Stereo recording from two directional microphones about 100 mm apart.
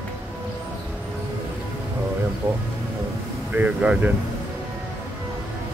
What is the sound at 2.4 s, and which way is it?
Speech, 25° right (ahead or behind).